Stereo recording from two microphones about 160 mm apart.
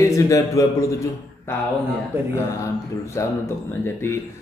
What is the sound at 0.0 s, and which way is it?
A man's voice, 20° left (ahead or behind).